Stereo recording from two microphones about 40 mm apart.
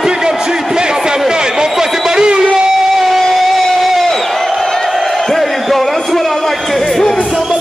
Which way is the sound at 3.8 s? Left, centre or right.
Centre.